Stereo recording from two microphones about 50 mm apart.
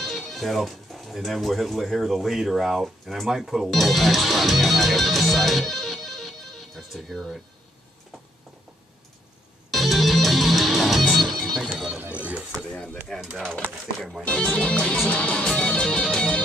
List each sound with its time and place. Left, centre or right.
0.0 s speech: centre
9.7 s music: centre
11.7 s music: centre
12.1 s a sound: right
13.1 s speech: centre
15.0 s music: left